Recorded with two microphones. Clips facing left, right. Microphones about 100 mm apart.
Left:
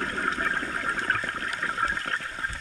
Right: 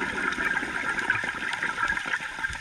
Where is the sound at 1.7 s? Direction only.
15° right (ahead or behind).